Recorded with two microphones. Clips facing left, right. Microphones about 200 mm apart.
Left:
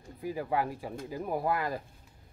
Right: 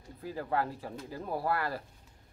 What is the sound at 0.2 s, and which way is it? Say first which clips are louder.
Speech: left 2 dB; 15° left (ahead or behind).